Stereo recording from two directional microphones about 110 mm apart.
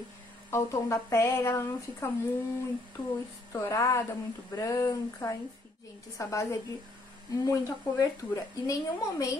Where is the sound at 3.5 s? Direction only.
25° left (ahead or behind).